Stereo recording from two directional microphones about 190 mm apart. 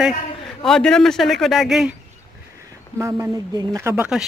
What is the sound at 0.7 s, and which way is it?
Speech, 5° left (ahead or behind).